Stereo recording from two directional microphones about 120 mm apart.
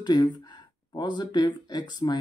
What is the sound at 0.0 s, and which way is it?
Speech, 35° left (ahead or behind).